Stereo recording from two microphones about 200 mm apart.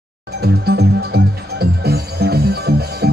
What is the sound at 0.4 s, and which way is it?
Music, 50° right (ahead or behind).